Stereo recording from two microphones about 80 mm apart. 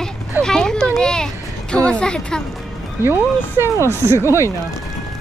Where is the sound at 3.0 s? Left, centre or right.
Right.